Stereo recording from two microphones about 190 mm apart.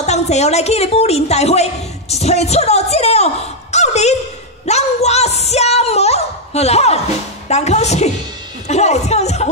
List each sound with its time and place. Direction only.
0.0 s a woman's voice: 35° left (ahead or behind)
3.7 s a sound: 35° left (ahead or behind)
7.4 s speech: 35° left (ahead or behind)